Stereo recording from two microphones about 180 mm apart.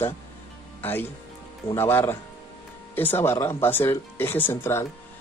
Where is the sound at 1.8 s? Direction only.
15° left (ahead or behind).